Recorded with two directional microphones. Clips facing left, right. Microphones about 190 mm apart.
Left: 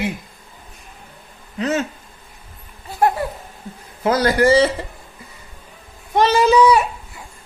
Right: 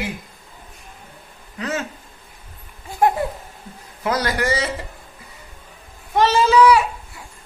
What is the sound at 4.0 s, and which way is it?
Speech, 30° left (ahead or behind).